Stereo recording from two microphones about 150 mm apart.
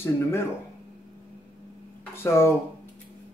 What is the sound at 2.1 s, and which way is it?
Speech, 15° left (ahead or behind).